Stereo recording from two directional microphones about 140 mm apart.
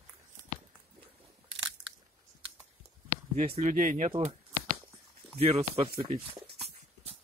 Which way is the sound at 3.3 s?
60° right (ahead or behind).